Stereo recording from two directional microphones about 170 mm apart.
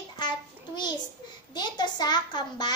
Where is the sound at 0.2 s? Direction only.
25° left (ahead or behind).